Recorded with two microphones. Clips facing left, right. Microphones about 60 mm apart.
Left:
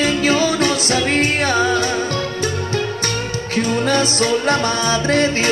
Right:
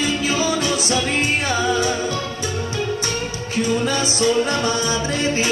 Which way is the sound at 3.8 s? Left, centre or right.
Left.